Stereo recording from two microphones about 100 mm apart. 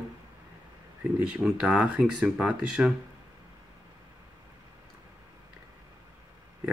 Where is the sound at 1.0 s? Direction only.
15° right (ahead or behind).